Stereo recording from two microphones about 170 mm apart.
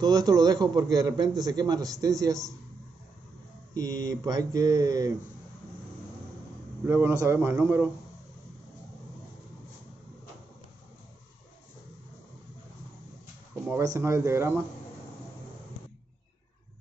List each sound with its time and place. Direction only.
0.0 s a man's voice: 20° right (ahead or behind)
3.7 s a man's voice: 20° right (ahead or behind)
6.9 s a man's voice: 15° right (ahead or behind)
13.7 s a man's voice: 15° right (ahead or behind)